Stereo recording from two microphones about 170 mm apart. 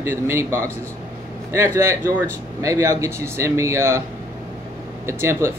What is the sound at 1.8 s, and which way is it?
Speech, 15° right (ahead or behind).